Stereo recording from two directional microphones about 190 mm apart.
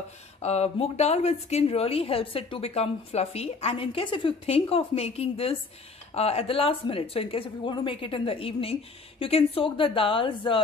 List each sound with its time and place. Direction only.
0.4 s a woman's voice: 35° left (ahead or behind)